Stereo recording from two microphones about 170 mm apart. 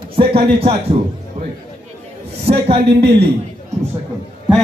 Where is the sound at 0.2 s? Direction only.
35° right (ahead or behind).